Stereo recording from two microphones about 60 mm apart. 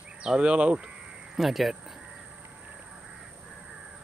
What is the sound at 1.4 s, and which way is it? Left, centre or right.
Speech, centre.